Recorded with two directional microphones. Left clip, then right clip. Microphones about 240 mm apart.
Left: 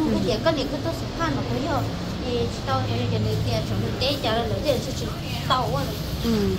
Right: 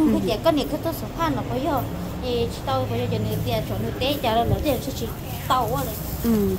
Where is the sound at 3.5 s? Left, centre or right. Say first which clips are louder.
Right 1 dB; right.